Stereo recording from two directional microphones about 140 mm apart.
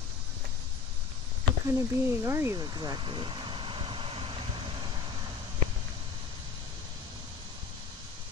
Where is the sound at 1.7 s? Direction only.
20° right (ahead or behind); by 4.4 s 40° right (ahead or behind).